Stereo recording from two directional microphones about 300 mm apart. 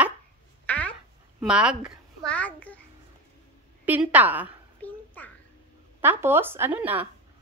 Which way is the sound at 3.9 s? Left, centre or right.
Centre.